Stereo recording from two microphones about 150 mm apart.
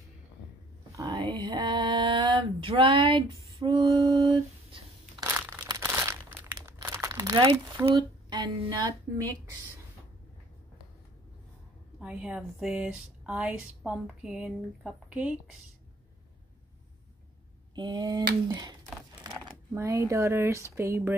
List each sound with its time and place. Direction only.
0.9 s a sound: 30° right (ahead or behind)
3.5 s female singing: 35° right (ahead or behind)
5.2 s crumpling: 15° right (ahead or behind)
7.8 s speech: 30° right (ahead or behind)
12.0 s speech: 10° right (ahead or behind)
17.7 s speech: 30° right (ahead or behind)